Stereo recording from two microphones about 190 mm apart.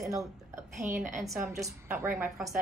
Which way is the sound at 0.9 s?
45° right (ahead or behind).